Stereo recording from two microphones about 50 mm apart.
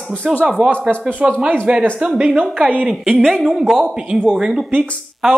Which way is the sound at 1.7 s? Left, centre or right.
Right.